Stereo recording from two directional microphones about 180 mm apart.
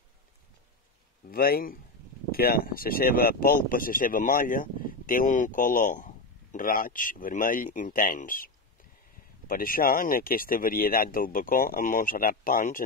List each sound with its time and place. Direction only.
1.3 s speech: 55° left (ahead or behind)
9.5 s speech: 55° left (ahead or behind)